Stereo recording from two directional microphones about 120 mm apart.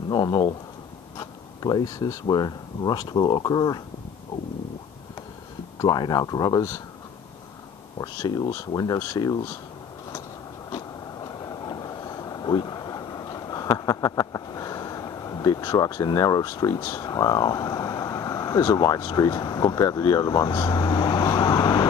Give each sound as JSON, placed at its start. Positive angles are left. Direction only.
{"t": 0.1, "sound": "speech", "side_deg": 35}
{"t": 5.8, "sound": "speech", "side_deg": 35}
{"t": 8.0, "sound": "speech", "side_deg": 35}
{"t": 10.7, "sound": "vehicle", "side_deg": 30}